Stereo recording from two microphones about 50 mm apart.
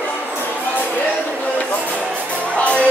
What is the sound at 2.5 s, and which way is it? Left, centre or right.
Music, left.